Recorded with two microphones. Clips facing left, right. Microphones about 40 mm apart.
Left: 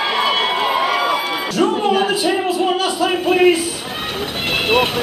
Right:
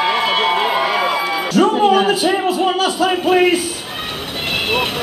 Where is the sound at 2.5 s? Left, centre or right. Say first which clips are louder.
Right 1 dB; right.